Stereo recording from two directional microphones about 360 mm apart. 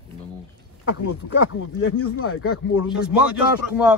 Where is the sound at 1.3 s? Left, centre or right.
Left.